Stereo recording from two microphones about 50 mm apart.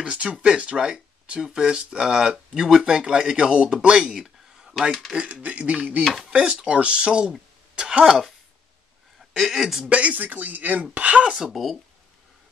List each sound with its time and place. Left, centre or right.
0.0 s speech: right
9.3 s speech: centre
9.8 s speech: right
11.3 s speech: centre